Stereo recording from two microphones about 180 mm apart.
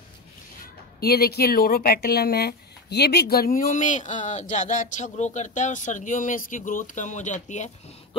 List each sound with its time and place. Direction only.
1.0 s speech: 60° left (ahead or behind); by 7.7 s 40° left (ahead or behind)